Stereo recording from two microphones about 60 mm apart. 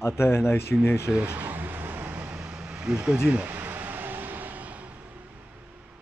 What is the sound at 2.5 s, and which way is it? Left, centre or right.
Vehicle, centre.